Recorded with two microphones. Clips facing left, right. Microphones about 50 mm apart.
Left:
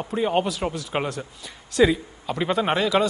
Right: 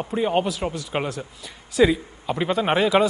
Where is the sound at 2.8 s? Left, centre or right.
Centre.